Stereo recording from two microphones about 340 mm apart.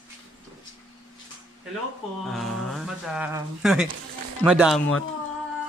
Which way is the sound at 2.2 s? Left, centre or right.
Centre.